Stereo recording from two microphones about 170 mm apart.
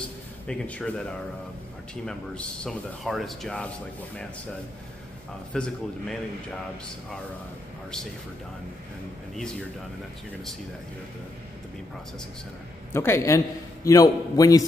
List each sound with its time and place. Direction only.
0.5 s speech: 5° left (ahead or behind)
5.5 s speech: 5° left (ahead or behind)
12.9 s a man's voice: 15° left (ahead or behind)